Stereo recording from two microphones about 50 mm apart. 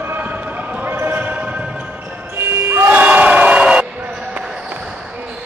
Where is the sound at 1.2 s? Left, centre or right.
Right.